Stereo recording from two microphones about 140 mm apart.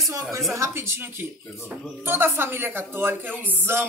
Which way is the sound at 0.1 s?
20° right (ahead or behind).